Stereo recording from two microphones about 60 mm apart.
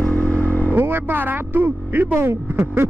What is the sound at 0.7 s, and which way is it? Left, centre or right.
Speech, right.